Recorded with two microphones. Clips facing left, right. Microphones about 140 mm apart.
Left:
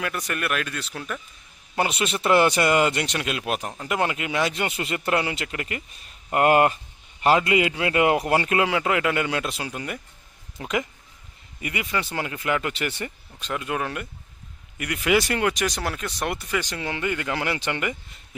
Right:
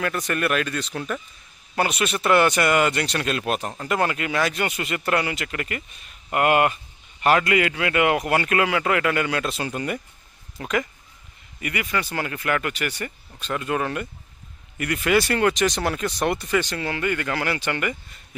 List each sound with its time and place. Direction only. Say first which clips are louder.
0.0 s speech: right 4 dB; 5° left (ahead or behind)
1.8 s speech: right 1 dB; 25° left (ahead or behind)
6.3 s speech: left 1 dB; 30° left (ahead or behind)
7.2 s speech: even; 20° left (ahead or behind); by 9.9 s 5° left (ahead or behind)
10.6 s speech: right 2 dB; 20° left (ahead or behind)